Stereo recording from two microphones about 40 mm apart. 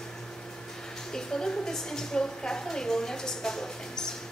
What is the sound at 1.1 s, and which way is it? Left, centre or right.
A woman's voice, centre.